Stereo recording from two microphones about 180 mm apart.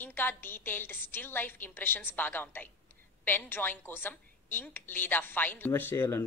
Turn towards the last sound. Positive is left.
turn(degrees=15)  # may be behind; listen again after turning